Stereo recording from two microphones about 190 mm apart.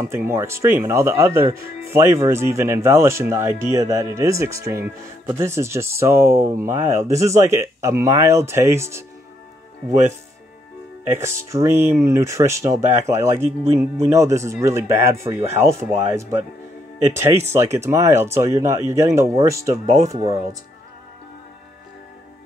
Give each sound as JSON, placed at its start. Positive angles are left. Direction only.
{"t": 0.0, "sound": "speech", "side_deg": -15}
{"t": 11.1, "sound": "speech", "side_deg": -15}